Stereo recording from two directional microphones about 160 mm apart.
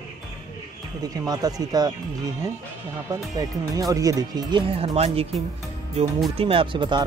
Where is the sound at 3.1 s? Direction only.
20° right (ahead or behind).